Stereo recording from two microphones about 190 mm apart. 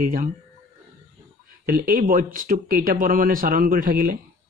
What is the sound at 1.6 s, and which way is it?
Speech, 50° right (ahead or behind).